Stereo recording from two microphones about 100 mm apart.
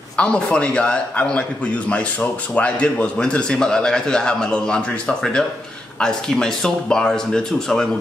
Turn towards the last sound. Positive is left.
turn(degrees=5)  # may be behind; listen again after turning